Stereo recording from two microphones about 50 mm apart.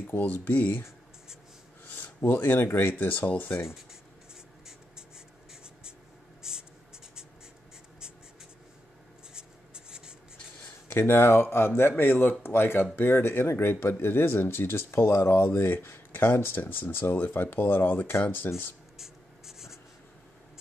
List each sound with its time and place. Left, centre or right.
0.0 s speech: left
1.9 s speech: left
6.4 s writing: centre
9.3 s writing: centre
11.0 s speech: left
18.9 s writing: centre